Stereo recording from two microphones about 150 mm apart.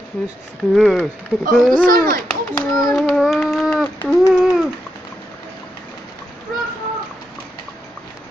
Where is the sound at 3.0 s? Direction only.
Centre (ahead or behind).